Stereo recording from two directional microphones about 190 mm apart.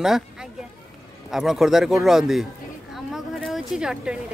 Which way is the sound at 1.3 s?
Centre (ahead or behind).